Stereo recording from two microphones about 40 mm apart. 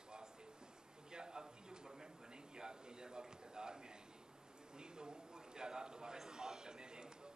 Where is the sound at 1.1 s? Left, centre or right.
Centre.